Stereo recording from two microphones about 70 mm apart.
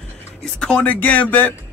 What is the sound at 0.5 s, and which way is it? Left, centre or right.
Speech, centre.